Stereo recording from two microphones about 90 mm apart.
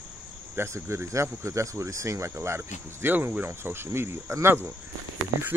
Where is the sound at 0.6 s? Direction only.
30° right (ahead or behind).